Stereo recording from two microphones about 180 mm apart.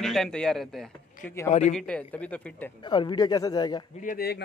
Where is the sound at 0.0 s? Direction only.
Centre (ahead or behind).